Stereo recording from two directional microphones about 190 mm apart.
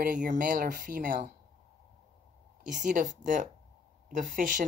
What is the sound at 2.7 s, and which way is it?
Speech, 45° right (ahead or behind).